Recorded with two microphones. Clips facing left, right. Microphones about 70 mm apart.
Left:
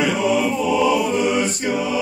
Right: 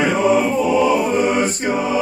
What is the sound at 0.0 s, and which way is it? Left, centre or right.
Chant, right.